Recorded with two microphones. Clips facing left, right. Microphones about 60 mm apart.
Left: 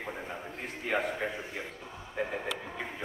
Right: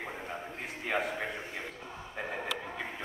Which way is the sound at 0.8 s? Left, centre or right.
Centre.